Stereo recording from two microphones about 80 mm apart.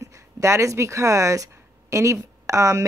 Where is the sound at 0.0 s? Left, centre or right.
Right.